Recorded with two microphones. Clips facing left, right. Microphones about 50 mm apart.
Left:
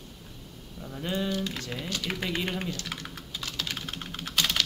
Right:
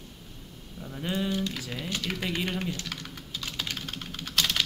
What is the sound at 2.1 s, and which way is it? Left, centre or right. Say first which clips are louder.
Speech: left 1 dB; centre.